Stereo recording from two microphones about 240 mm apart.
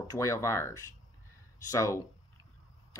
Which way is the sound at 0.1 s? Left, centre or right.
Centre.